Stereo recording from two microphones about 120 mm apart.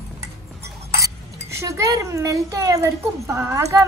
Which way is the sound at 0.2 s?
25° right (ahead or behind).